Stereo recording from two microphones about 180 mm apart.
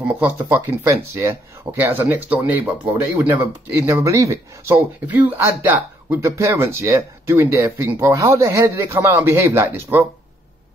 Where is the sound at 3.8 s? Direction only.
15° right (ahead or behind).